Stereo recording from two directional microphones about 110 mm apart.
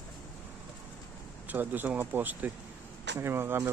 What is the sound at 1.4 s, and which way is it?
Speech, 15° right (ahead or behind).